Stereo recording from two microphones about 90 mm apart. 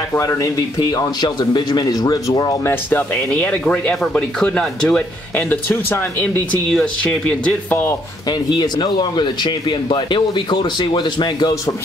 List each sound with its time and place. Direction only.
0.1 s speech: 35° left (ahead or behind)
0.7 s speech: 50° left (ahead or behind)
2.6 s speech: 20° left (ahead or behind)
6.7 s speech: 10° left (ahead or behind)
8.3 s speech: 55° left (ahead or behind)